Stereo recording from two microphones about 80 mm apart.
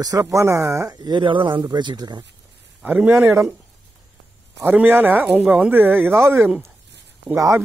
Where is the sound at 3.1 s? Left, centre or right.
Right.